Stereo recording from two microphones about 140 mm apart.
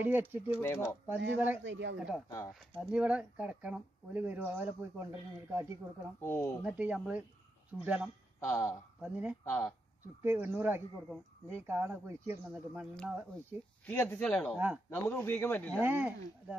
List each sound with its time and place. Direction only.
0.0 s speech: 15° right (ahead or behind)
0.6 s speech: 15° left (ahead or behind)
1.0 s speech: 15° right (ahead or behind)
2.2 s speech: 25° left (ahead or behind)
2.9 s speech: 10° right (ahead or behind)
6.2 s speech: 20° left (ahead or behind)
6.6 s speech: 10° right (ahead or behind)
8.5 s speech: 20° left (ahead or behind)
9.0 s speech: 10° right (ahead or behind)
9.4 s speech: 15° left (ahead or behind)
10.2 s speech: 15° right (ahead or behind)
13.8 s speech: 15° left (ahead or behind)
15.8 s speech: 10° right (ahead or behind)